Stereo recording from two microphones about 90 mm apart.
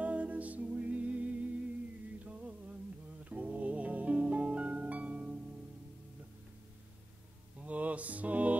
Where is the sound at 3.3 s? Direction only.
15° right (ahead or behind).